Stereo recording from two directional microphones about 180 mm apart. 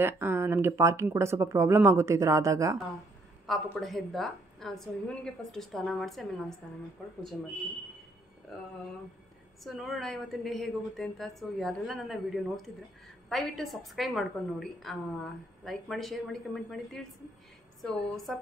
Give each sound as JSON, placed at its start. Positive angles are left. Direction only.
{"t": 0.0, "sound": "speech", "side_deg": -15}
{"t": 3.4, "sound": "a woman's voice", "side_deg": 0}
{"t": 9.6, "sound": "a woman's voice", "side_deg": 0}